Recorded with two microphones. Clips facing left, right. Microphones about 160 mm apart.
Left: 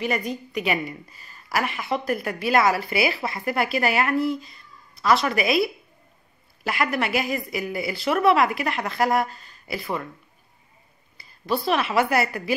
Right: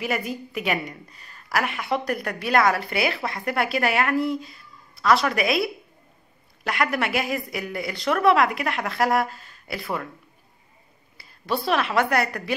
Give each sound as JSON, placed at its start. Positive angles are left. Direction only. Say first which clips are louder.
{"t": 0.0, "sound": "a woman's voice", "louder": "left 1 dB", "side_deg": -5}
{"t": 11.1, "sound": "a woman's voice", "louder": "left 1 dB", "side_deg": 0}